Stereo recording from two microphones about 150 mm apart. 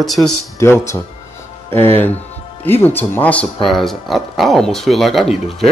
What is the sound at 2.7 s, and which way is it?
Speech, 15° left (ahead or behind).